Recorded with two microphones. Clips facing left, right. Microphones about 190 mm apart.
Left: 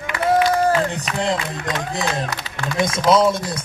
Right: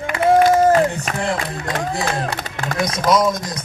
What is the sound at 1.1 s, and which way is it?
Speech, 45° right (ahead or behind).